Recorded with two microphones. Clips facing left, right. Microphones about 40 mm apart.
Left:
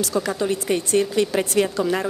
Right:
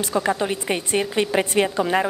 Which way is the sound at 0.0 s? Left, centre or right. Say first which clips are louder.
Right 1 dB; right.